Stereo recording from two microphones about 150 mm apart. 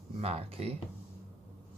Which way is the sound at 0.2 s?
40° right (ahead or behind).